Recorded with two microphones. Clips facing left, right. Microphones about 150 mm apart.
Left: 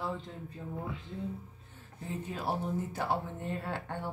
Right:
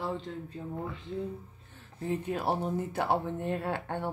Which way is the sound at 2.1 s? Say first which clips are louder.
Right 5 dB; 60° right (ahead or behind).